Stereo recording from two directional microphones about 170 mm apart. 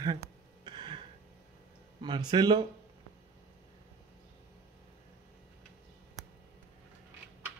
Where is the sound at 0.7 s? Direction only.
30° right (ahead or behind).